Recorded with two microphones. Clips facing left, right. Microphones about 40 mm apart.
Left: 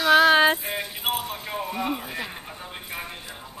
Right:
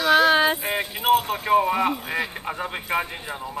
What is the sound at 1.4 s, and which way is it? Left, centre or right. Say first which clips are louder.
A man's voice: right 9 dB; right.